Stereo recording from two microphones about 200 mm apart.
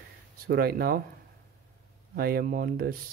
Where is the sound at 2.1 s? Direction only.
50° right (ahead or behind).